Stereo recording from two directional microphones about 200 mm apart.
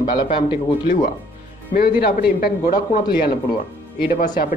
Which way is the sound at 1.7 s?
50° left (ahead or behind).